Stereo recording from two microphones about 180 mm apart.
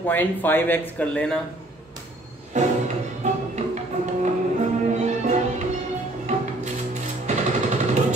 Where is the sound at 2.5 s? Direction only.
40° right (ahead or behind).